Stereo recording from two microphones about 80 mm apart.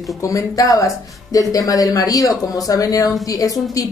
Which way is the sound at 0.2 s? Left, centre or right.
Left.